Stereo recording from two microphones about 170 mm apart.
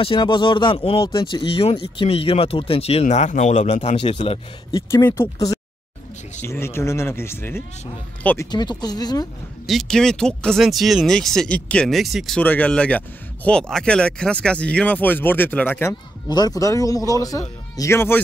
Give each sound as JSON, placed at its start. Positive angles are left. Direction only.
{"t": 0.0, "sound": "speech", "side_deg": 30}
{"t": 4.7, "sound": "speech", "side_deg": 15}
{"t": 8.5, "sound": "speech", "side_deg": 25}
{"t": 9.7, "sound": "speech", "side_deg": 0}